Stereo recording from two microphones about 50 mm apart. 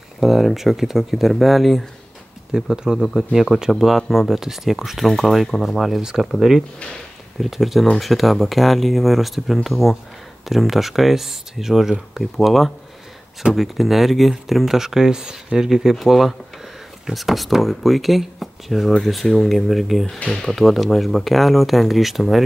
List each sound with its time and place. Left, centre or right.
0.2 s speech: centre
2.5 s speech: centre
20.2 s speech: centre
20.4 s speech: centre